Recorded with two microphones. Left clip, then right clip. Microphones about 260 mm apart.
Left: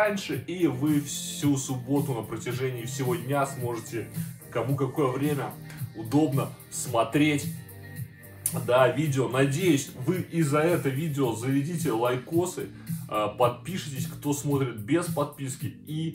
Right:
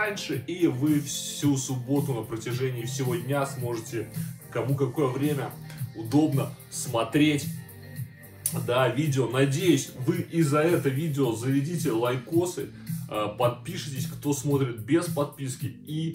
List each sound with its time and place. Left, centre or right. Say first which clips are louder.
0.0 s speech: left 3 dB; centre
8.5 s speech: left 3 dB; centre